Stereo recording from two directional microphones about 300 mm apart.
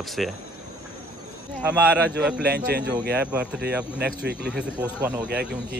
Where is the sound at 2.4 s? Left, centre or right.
Right.